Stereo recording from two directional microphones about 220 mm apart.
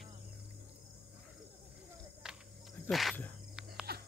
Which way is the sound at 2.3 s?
5° right (ahead or behind).